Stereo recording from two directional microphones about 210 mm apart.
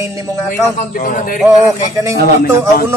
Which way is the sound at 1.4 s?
15° right (ahead or behind).